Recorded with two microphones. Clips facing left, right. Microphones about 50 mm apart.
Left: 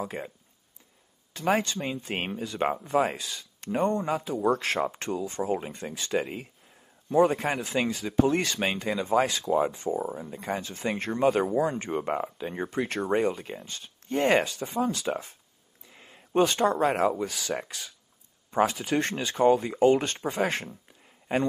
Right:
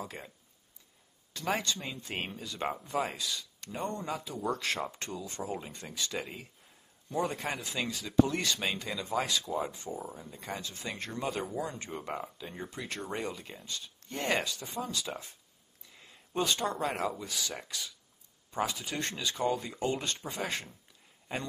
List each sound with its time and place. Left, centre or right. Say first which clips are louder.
0.0 s speech: left 8 dB; left
1.3 s speech: left 7 dB; left
13.0 s speech: left 11 dB; left
15.9 s speech: left 10 dB; left